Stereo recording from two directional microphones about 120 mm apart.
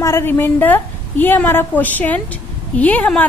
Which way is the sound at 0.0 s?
20° left (ahead or behind).